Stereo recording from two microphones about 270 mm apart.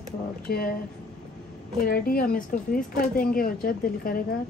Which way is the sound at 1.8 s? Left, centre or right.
Left.